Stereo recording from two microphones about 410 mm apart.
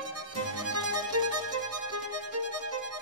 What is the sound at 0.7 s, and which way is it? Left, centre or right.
Music, right.